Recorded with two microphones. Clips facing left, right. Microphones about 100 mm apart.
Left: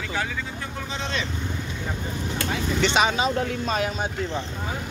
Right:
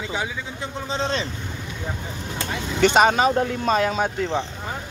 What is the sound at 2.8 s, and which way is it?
Speech, 50° right (ahead or behind).